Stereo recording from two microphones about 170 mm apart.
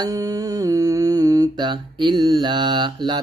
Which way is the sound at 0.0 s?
20° right (ahead or behind).